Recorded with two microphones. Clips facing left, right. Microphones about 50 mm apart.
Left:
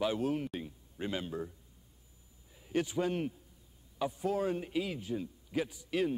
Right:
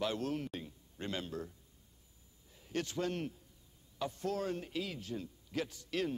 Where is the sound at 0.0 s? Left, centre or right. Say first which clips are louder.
Left 4 dB; centre.